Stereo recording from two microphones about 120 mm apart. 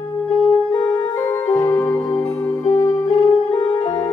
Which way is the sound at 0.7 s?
25° left (ahead or behind).